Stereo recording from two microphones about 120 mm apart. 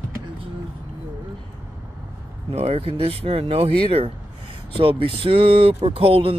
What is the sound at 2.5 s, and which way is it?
Speech, 60° right (ahead or behind).